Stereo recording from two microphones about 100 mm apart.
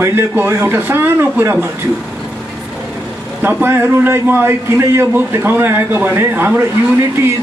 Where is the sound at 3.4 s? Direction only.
20° right (ahead or behind).